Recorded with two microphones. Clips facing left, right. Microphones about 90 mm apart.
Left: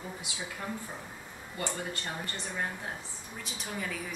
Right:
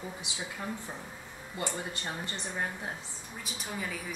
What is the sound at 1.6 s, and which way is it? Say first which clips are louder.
Speech: even; 25° right (ahead or behind).